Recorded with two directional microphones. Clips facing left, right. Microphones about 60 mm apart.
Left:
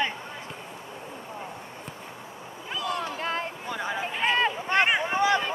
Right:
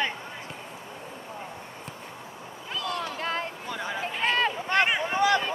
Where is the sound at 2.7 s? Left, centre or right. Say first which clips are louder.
Left 1 dB; left.